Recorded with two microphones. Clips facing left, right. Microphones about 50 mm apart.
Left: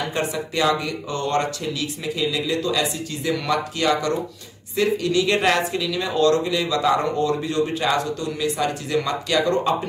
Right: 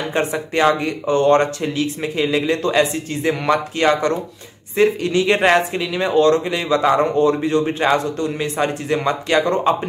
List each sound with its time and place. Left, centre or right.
0.1 s speech: right